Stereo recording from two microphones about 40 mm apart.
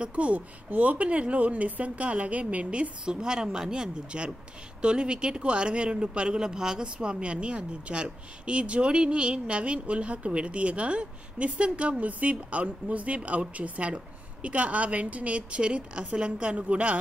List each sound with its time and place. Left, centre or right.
0.0 s speech: right